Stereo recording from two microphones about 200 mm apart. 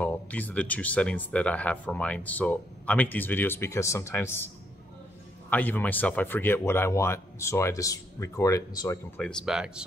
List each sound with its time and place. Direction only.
0.0 s speech: 5° left (ahead or behind)
5.5 s speech: 10° left (ahead or behind)